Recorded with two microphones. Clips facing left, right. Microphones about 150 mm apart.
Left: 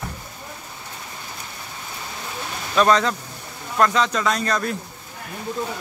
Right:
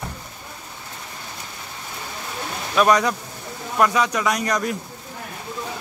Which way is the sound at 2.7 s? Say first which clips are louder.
Even; 10° right (ahead or behind).